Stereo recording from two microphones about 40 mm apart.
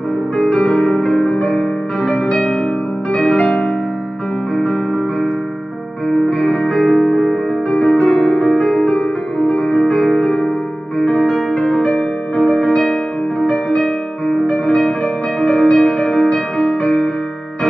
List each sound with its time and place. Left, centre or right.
0.4 s music: left
6.0 s music: centre